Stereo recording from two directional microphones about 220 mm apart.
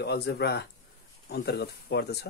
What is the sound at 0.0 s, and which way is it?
Speech, 45° left (ahead or behind).